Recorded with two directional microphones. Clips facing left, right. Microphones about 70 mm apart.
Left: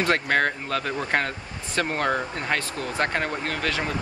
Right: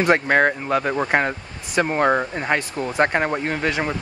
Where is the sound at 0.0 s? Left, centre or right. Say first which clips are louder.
Right 5 dB; centre.